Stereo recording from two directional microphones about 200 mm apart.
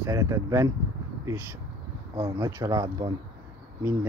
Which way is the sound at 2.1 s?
20° right (ahead or behind).